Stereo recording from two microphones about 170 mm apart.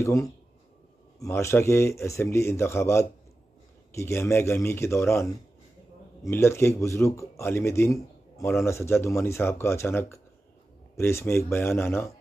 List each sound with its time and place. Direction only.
0.0 s speech: 20° left (ahead or behind)